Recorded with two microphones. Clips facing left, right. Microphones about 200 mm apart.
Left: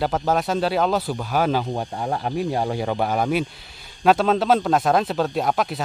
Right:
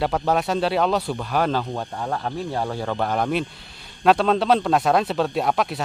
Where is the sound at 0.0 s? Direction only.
Centre (ahead or behind).